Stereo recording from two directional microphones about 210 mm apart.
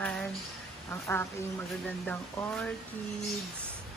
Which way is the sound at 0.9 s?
10° left (ahead or behind).